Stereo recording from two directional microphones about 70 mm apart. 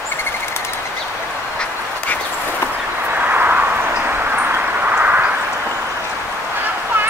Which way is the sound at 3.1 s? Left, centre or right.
Right.